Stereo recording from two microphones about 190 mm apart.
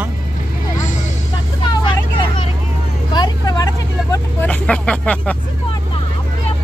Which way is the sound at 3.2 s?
20° left (ahead or behind).